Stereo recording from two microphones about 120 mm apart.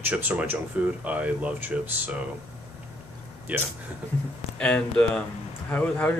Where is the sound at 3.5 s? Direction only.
15° right (ahead or behind).